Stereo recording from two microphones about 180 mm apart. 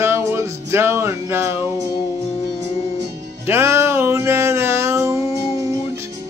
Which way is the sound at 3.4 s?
15° right (ahead or behind).